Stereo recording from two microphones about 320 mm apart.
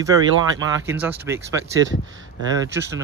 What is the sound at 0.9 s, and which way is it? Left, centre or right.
Speech, centre.